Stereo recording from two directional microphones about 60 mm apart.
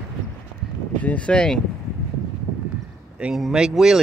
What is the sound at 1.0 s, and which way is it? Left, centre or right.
Speech, left.